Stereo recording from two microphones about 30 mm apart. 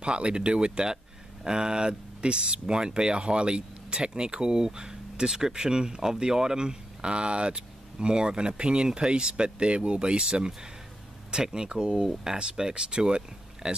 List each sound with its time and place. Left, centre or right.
0.0 s speech: right